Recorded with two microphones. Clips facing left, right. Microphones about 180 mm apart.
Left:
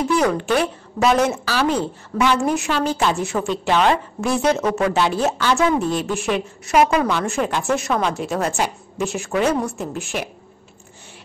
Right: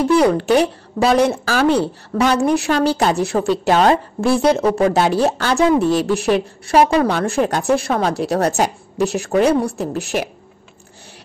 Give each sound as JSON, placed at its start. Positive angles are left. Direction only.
{"t": 0.1, "sound": "a woman's voice", "side_deg": -35}
{"t": 1.3, "sound": "speech", "side_deg": -45}
{"t": 1.7, "sound": "a woman's voice", "side_deg": -35}